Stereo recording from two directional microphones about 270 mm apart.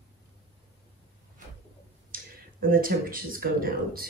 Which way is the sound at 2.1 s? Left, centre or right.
Right.